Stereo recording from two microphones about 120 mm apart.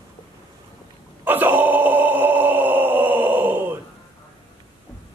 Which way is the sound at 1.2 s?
15° right (ahead or behind).